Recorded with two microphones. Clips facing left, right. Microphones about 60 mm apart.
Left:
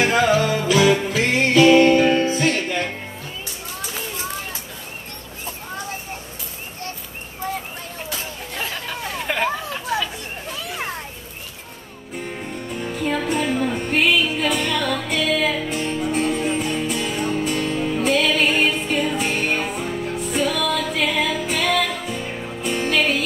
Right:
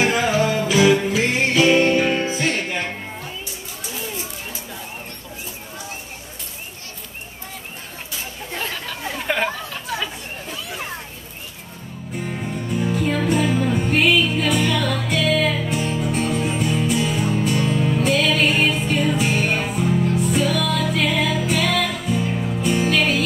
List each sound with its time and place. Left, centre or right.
0.2 s music: centre
9.3 s chatter: centre
12.2 s music: centre